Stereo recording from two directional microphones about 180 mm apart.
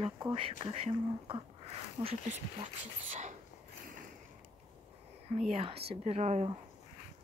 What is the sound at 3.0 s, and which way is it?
Speech, 45° right (ahead or behind).